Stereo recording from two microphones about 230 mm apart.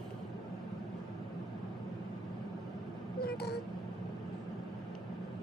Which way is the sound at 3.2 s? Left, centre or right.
Left.